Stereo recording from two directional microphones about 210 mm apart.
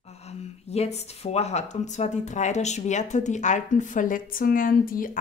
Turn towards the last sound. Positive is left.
turn(degrees=40)  # may be behind; listen again after turning